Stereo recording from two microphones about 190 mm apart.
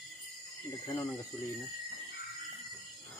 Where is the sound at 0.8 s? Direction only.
15° left (ahead or behind).